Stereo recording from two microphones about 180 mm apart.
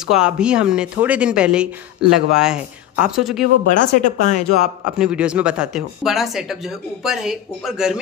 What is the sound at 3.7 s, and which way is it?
Speech, 45° left (ahead or behind).